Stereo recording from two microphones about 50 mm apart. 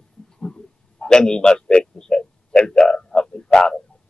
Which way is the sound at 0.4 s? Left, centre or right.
Centre.